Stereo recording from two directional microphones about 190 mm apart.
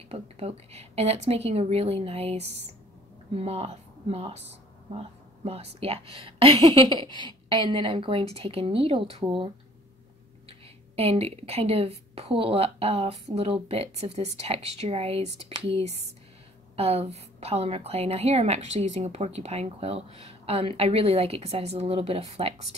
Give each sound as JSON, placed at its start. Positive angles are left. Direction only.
{"t": 0.1, "sound": "a woman's voice", "side_deg": -30}
{"t": 11.0, "sound": "a woman's voice", "side_deg": -30}